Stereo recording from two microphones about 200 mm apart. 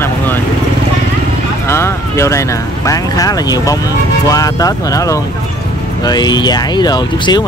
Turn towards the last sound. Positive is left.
turn(degrees=20)  # may be behind; listen again after turning